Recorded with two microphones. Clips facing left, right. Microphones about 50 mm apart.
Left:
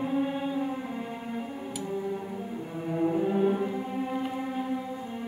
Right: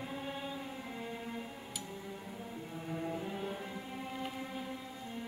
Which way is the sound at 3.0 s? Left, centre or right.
Left.